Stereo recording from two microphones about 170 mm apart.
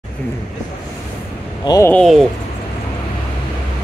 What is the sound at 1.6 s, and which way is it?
Speech, 25° left (ahead or behind).